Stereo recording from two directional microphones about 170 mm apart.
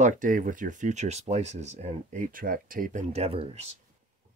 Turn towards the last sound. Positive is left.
turn(degrees=-35)  # may be behind; listen again after turning